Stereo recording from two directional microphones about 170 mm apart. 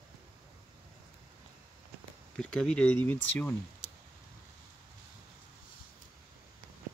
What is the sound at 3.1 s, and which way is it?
Speech, 90° left.